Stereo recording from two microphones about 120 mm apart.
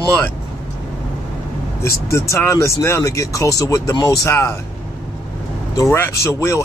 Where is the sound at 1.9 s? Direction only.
25° left (ahead or behind).